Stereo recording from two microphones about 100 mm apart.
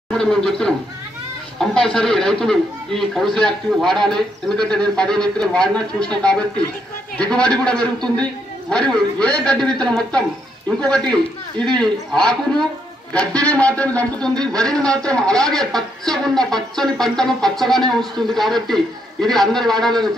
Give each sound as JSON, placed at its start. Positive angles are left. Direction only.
{"t": 0.1, "sound": "a man's voice", "side_deg": 5}
{"t": 11.8, "sound": "a man's voice", "side_deg": 10}
{"t": 14.3, "sound": "speech", "side_deg": -40}
{"t": 14.6, "sound": "a man's voice", "side_deg": 5}